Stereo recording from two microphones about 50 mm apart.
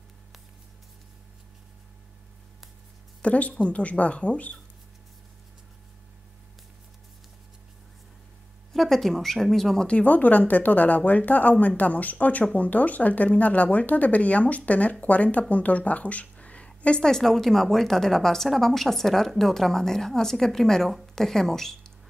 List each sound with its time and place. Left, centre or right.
3.2 s speech: left
8.7 s speech: centre
9.8 s a woman's voice: left; by 21.9 s centre